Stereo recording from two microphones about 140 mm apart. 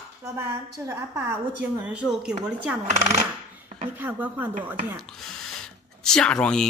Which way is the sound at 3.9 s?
10° right (ahead or behind).